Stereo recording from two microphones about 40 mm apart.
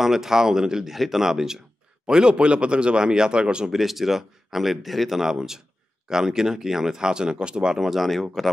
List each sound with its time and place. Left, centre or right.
0.0 s speech: centre
0.9 s a man's voice: centre; by 3.7 s right
3.7 s speech: centre
5.2 s speech: centre
8.0 s speech: centre